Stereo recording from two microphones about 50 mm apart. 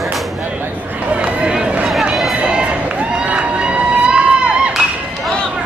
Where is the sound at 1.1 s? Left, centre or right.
Right.